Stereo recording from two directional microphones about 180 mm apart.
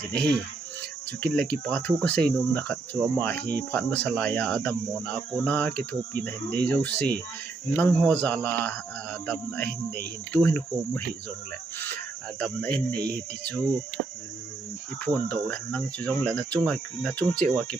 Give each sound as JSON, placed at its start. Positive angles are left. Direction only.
{"t": 0.1, "sound": "speech", "side_deg": -70}
{"t": 1.2, "sound": "speech", "side_deg": 5}
{"t": 11.8, "sound": "cricket", "side_deg": 10}
{"t": 12.4, "sound": "speech", "side_deg": 5}
{"t": 15.0, "sound": "speech", "side_deg": 5}